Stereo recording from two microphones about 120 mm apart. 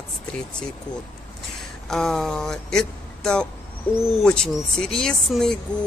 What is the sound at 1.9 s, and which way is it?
Speech, centre (ahead or behind).